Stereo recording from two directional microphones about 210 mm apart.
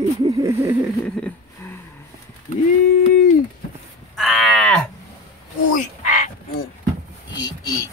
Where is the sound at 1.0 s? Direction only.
5° left (ahead or behind).